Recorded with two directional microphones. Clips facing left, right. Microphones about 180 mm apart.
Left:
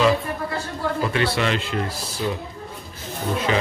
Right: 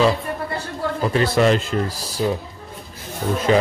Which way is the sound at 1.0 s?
40° right (ahead or behind).